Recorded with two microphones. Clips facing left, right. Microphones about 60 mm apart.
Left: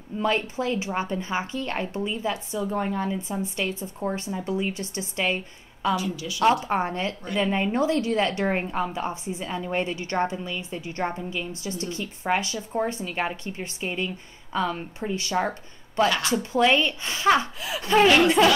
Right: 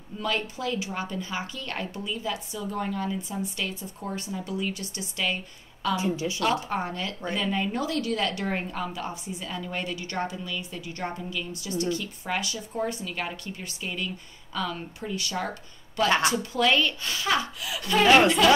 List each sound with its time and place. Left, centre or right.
0.2 s speech: left
5.9 s a woman's voice: right
6.4 s speech: left
16.1 s a woman's voice: right
16.5 s speech: left
18.0 s a woman's voice: right